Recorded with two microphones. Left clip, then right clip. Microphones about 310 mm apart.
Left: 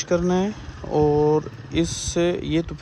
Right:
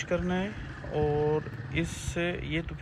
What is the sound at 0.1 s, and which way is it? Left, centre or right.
Speech, centre.